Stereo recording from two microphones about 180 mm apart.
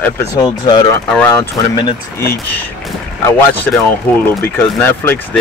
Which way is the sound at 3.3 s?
10° left (ahead or behind).